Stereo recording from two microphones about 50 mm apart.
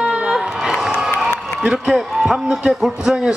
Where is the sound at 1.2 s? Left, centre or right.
Centre.